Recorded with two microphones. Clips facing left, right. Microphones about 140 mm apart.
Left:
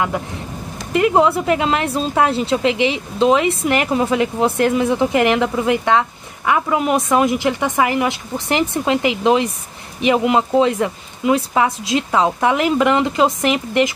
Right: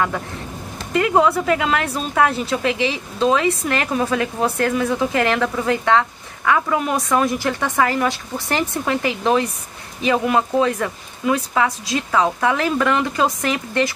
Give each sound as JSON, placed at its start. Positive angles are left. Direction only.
{"t": 0.9, "sound": "speech", "side_deg": 20}